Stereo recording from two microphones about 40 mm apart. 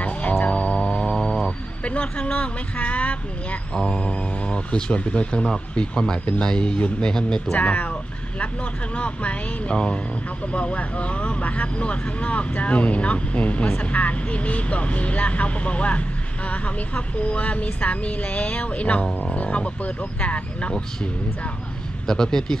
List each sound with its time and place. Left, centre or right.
0.0 s music: left
0.7 s a sound: left
1.9 s speech: left
2.3 s a sound: left
3.7 s mantra: left
6.8 s speech: left
7.5 s speech: left
22.0 s speech: centre